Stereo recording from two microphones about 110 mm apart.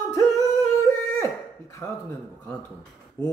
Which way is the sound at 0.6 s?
30° left (ahead or behind).